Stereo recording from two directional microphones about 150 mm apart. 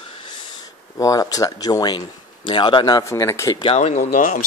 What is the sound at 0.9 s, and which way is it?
Speech, 20° left (ahead or behind).